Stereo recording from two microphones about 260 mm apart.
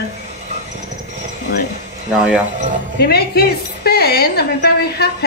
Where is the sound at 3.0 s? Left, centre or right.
Left.